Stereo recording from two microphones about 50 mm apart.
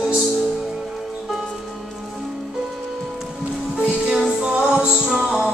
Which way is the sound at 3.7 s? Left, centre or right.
Right.